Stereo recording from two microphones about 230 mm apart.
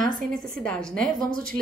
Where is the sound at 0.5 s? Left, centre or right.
Centre.